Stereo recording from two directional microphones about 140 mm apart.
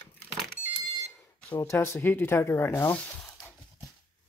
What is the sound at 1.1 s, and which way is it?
Speech, 15° left (ahead or behind).